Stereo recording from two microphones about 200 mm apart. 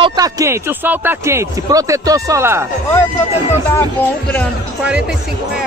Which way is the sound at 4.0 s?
10° left (ahead or behind).